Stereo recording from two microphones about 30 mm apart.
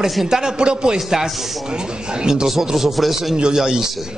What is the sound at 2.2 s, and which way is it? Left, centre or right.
Speech, right.